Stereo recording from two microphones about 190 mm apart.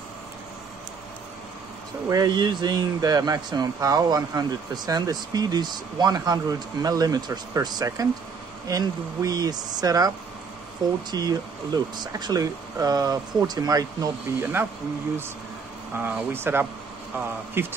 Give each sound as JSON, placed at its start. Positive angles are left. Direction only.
{"t": 2.0, "sound": "a man's voice", "side_deg": -20}
{"t": 16.0, "sound": "speech", "side_deg": -10}